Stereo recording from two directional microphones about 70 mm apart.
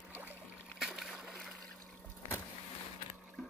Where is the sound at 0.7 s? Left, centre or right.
Centre.